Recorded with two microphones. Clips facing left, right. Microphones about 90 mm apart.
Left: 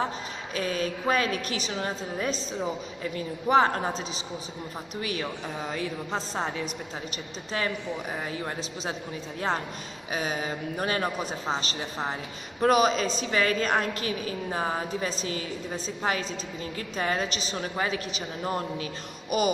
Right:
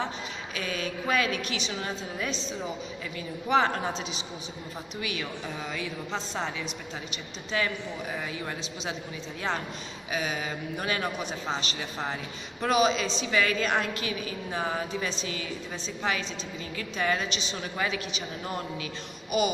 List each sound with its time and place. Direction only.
0.6 s a man's voice: 40° left (ahead or behind)
5.0 s a man's voice: 40° left (ahead or behind)
10.1 s a man's voice: 40° left (ahead or behind)
19.3 s a sound: 40° left (ahead or behind)